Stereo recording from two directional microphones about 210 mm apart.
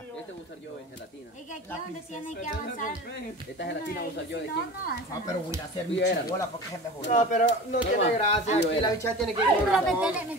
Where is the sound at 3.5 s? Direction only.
55° left (ahead or behind).